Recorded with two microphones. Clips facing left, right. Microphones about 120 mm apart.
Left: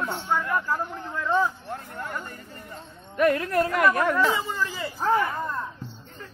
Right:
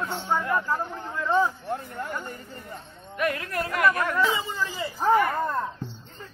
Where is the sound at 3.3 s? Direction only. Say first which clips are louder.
Left 7 dB; 25° left (ahead or behind).